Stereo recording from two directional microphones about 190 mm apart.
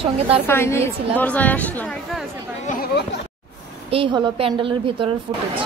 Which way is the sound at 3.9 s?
30° right (ahead or behind).